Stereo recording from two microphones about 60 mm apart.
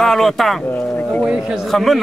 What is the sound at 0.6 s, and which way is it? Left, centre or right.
Speech, left.